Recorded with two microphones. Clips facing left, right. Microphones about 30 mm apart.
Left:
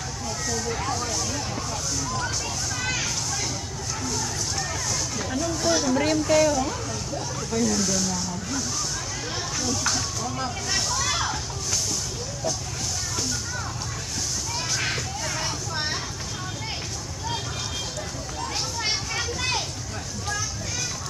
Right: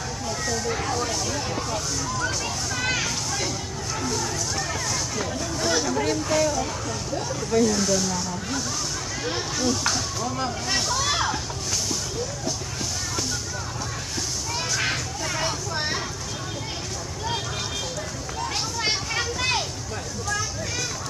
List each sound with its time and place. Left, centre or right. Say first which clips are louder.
0.5 s speech: right 1 dB; centre
2.8 s a sound: right 3 dB; centre
5.4 s speech: left 3 dB; centre
5.9 s speech: left 2 dB; centre
7.5 s speech: right 3 dB; centre
9.2 s speech: right 5 dB; centre
14.8 s a sound: right 2 dB; centre
15.7 s vehicle: right 1 dB; centre
18.9 s a sound: right 3 dB; centre